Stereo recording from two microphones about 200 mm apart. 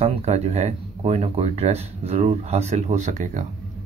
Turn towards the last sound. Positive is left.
turn(degrees=-35)  # may be behind; listen again after turning